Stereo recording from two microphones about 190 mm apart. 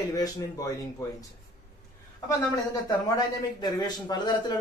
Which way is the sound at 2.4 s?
20° left (ahead or behind).